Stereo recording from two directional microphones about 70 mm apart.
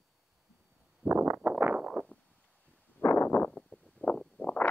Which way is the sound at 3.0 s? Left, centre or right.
Left.